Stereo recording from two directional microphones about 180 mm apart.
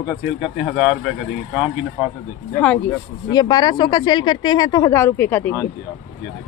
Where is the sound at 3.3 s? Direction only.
20° left (ahead or behind).